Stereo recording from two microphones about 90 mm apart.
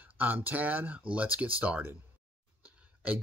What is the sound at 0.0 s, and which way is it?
Speech, 20° right (ahead or behind).